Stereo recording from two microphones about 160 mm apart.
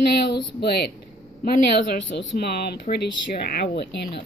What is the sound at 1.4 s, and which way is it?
Speech, 75° left (ahead or behind).